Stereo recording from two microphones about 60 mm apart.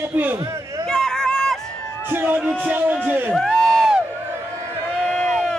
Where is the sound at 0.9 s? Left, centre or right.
Centre.